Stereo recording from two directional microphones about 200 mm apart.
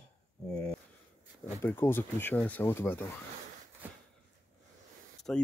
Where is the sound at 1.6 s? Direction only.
10° left (ahead or behind).